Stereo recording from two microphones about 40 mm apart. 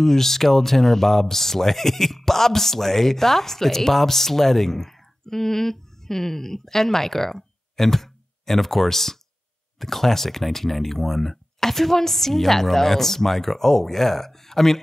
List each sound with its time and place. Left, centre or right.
0.0 s speech: centre